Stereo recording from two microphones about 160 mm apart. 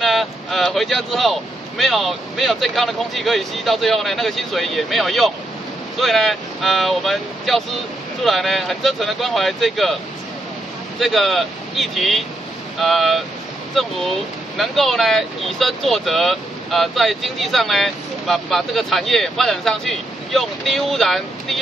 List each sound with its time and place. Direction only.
0.0 s speech: centre (ahead or behind)
11.0 s speech: centre (ahead or behind)